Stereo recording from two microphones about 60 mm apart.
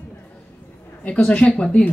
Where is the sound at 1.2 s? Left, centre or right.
Centre.